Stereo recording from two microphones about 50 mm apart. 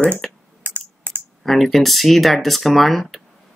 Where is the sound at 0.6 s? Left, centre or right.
Right.